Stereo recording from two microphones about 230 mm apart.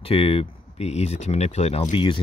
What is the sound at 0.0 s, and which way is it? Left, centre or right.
Speech, left.